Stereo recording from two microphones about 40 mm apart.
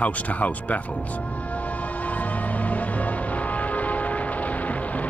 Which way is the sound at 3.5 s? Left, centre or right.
Left.